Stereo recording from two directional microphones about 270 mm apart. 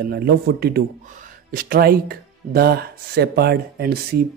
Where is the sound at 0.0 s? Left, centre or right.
Right.